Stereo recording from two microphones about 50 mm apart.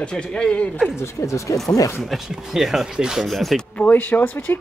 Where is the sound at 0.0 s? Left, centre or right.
Centre.